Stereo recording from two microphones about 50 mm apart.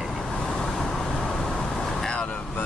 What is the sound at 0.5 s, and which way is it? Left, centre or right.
Vehicle, centre.